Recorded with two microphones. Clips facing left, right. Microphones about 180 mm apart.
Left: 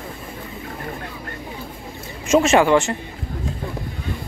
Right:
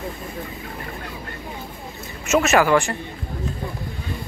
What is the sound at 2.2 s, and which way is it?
Speech, 30° left (ahead or behind).